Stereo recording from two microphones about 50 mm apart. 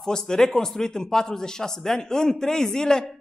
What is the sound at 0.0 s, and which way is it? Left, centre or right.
A man's voice, centre.